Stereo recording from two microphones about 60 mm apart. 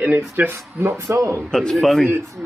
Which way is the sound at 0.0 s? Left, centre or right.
Right.